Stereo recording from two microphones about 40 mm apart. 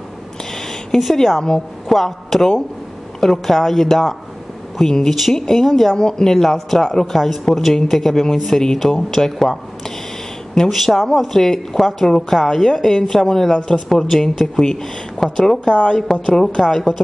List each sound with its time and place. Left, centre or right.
0.5 s a sound: centre
1.1 s a woman's voice: centre
13.8 s speech: centre
15.7 s a woman's voice: left